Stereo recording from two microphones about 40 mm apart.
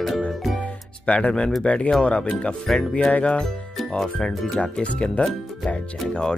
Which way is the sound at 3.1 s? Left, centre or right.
Left.